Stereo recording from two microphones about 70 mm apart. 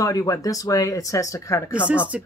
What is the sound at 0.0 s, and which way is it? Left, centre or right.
Speech, left.